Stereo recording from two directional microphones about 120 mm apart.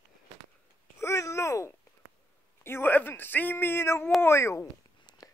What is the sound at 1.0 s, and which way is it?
Babbling, 25° left (ahead or behind).